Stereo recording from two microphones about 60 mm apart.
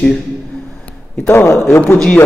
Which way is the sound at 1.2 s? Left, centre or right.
Left.